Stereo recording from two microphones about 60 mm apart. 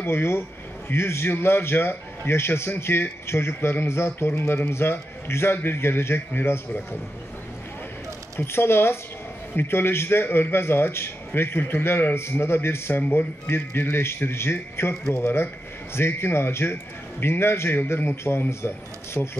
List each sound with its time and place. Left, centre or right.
0.0 s a man's voice: left
8.4 s a man's voice: left
19.2 s speech: left